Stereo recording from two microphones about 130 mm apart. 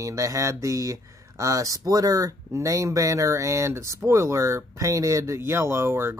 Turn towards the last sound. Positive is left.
turn(degrees=-20)  # may be behind; listen again after turning